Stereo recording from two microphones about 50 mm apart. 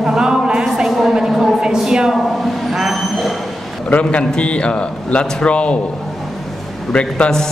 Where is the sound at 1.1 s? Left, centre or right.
Centre.